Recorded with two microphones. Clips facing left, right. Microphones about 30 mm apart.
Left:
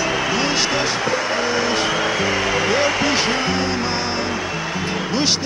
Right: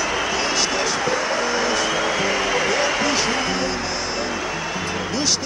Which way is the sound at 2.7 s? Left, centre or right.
Left.